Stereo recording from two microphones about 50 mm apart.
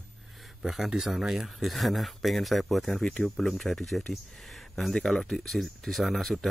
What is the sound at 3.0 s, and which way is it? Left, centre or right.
Speech, centre.